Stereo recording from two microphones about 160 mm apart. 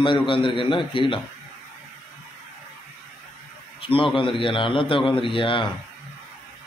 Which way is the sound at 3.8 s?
35° left (ahead or behind).